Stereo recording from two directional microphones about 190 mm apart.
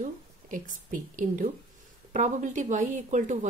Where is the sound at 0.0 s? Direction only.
45° right (ahead or behind).